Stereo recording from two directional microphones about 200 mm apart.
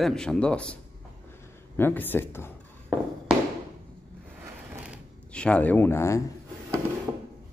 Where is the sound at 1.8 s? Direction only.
10° left (ahead or behind).